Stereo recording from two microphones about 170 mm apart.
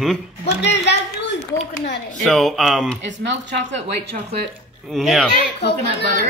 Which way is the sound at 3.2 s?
90° right.